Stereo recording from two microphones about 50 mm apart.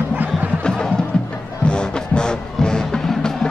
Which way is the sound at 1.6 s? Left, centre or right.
Centre.